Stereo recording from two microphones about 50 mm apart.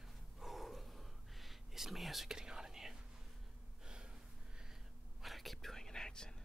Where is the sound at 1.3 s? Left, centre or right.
Centre.